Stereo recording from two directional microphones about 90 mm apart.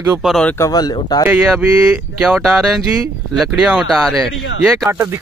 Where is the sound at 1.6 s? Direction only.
15° right (ahead or behind).